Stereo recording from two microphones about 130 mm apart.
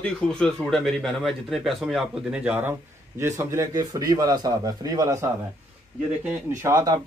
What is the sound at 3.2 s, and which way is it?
A man's voice, 20° right (ahead or behind).